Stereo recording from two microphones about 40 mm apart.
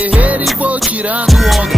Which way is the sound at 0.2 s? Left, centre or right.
Right.